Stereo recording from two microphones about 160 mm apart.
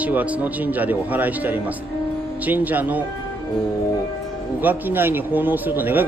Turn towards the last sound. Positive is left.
turn(degrees=-10)  # may be behind; listen again after turning